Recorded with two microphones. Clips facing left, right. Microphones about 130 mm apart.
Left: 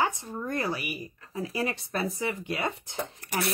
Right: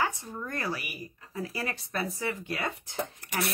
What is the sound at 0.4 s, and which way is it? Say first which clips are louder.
Speech: left 4 dB; 20° left (ahead or behind).